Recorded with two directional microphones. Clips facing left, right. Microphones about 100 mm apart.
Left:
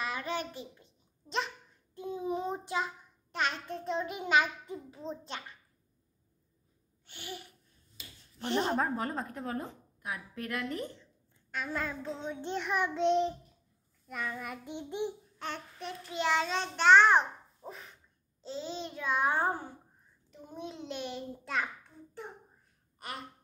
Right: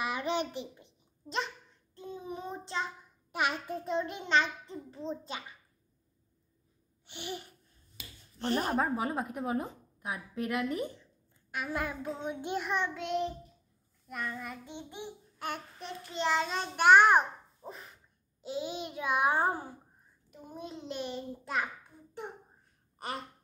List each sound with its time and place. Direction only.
0.0 s a child's voice: 20° right (ahead or behind)
2.0 s child singing: 15° left (ahead or behind)
3.3 s a child's voice: 10° right (ahead or behind)
7.1 s a sound: 20° right (ahead or behind)
8.5 s a woman's voice: 5° right (ahead or behind)
12.6 s child singing: 5° left (ahead or behind)
12.9 s child singing: 25° left (ahead or behind)
14.0 s a child's voice: centre (ahead or behind)
14.7 s babbling: 15° right (ahead or behind)
15.8 s a child's voice: centre (ahead or behind)
17.6 s a child's voice: centre (ahead or behind)
18.4 s a woman's voice: 10° right (ahead or behind)
22.9 s gasp: 30° right (ahead or behind)